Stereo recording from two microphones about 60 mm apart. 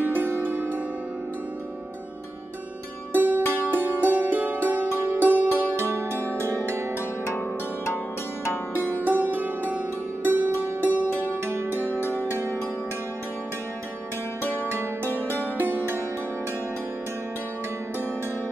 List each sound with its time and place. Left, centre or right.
0.0 s music: right
3.1 s music: right
7.3 s music: left
8.7 s music: right
11.4 s music: right
11.8 s music: left
14.6 s music: right